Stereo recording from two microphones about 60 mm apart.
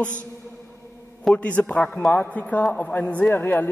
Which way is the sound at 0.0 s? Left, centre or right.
Left.